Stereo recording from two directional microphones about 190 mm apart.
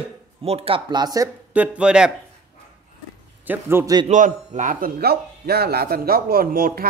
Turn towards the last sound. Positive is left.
turn(degrees=-50)  # may be behind; listen again after turning